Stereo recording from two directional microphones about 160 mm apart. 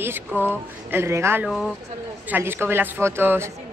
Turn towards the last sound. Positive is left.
turn(degrees=-15)  # may be behind; listen again after turning